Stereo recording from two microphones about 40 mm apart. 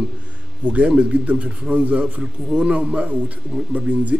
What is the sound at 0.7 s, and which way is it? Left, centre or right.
Speech, right.